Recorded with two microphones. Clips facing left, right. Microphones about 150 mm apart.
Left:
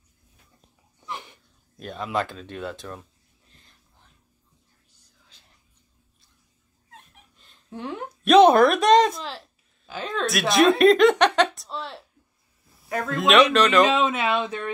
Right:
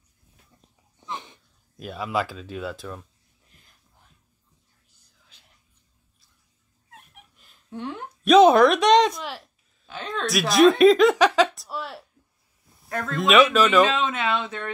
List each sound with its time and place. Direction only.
1.0 s sneeze: 20° right (ahead or behind)
1.8 s speech: 5° right (ahead or behind)
6.9 s dog: 10° right (ahead or behind)
7.7 s a woman's voice: 5° left (ahead or behind)
13.1 s speech: centre (ahead or behind)
13.8 s speech: 10° left (ahead or behind)